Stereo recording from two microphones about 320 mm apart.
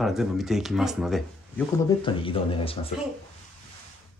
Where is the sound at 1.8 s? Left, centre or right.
Centre.